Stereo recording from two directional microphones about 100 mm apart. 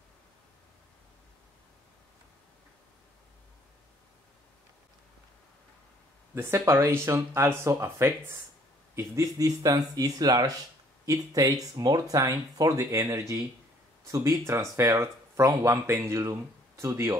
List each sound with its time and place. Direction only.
6.3 s speech: 25° right (ahead or behind)
14.1 s speech: 30° right (ahead or behind)